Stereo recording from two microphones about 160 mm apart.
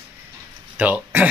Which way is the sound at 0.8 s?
10° right (ahead or behind).